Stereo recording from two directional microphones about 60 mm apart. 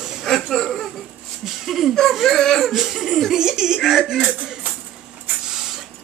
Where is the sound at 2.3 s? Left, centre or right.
Centre.